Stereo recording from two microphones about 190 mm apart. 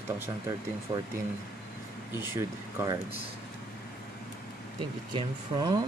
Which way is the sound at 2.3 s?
15° right (ahead or behind).